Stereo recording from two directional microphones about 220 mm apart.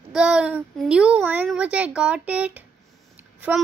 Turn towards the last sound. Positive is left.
turn(degrees=-10)  # may be behind; listen again after turning